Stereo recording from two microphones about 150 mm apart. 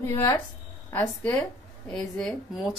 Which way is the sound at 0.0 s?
15° left (ahead or behind).